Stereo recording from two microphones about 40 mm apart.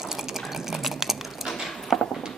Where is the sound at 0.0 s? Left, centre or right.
Centre.